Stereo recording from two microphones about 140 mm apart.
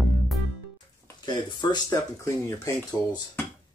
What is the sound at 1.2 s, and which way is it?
Speech, 30° left (ahead or behind).